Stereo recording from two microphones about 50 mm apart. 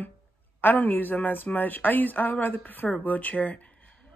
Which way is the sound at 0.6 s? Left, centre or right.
Left.